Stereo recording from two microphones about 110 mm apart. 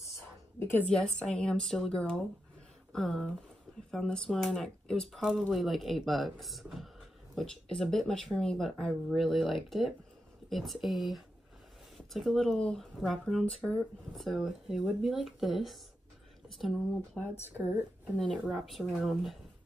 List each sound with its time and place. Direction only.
0.1 s a sound: 20° left (ahead or behind)
0.8 s a woman's voice: 5° left (ahead or behind)
18.3 s speech: centre (ahead or behind)